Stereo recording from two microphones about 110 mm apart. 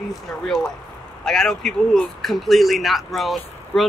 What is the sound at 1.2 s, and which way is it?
Speech, 5° left (ahead or behind).